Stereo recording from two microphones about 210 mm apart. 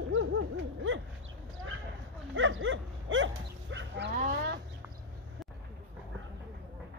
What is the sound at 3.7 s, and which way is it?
Moo, 55° right (ahead or behind).